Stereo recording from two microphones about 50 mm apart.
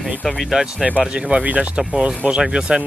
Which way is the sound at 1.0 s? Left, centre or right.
Centre.